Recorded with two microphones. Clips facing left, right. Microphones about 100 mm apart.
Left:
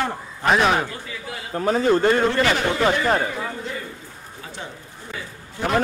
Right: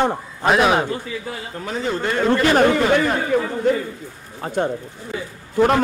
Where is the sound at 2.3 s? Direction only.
50° right (ahead or behind).